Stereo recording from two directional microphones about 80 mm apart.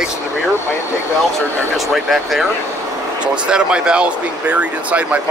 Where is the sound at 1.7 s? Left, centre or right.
Centre.